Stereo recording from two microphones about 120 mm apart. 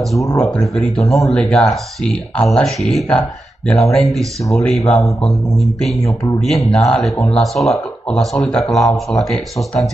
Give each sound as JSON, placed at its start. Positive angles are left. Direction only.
{"t": 0.2, "sound": "speech", "side_deg": 30}
{"t": 0.5, "sound": "speech", "side_deg": 5}